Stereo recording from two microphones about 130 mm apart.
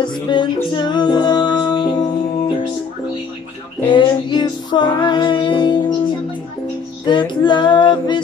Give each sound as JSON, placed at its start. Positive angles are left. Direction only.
{"t": 0.3, "sound": "music", "side_deg": 35}
{"t": 3.9, "sound": "music", "side_deg": 35}
{"t": 7.1, "sound": "female singing", "side_deg": 35}